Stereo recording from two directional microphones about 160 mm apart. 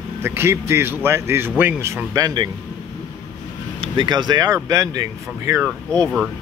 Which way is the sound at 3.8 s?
30° right (ahead or behind).